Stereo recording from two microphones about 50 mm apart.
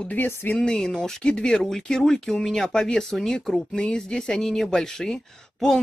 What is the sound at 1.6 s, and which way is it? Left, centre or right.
Speech, centre.